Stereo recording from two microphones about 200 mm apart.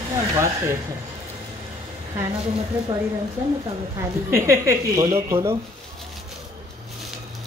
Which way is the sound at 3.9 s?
15° right (ahead or behind).